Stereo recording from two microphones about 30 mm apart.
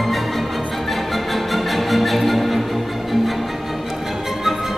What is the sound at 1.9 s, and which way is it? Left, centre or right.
Music, centre.